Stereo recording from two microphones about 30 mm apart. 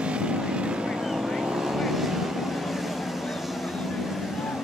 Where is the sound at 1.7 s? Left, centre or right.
Centre.